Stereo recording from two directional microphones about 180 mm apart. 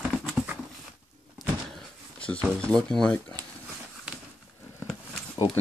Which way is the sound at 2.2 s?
5° left (ahead or behind).